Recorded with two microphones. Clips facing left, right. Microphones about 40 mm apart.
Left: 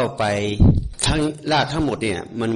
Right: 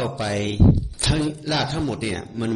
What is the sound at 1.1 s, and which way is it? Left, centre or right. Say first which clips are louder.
Speech: left 2 dB; centre.